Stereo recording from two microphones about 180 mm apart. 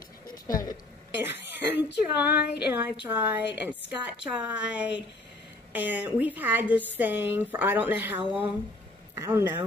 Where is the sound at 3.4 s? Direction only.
75° left (ahead or behind).